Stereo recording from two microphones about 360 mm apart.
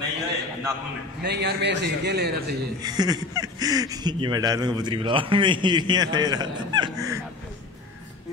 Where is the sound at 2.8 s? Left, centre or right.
Centre.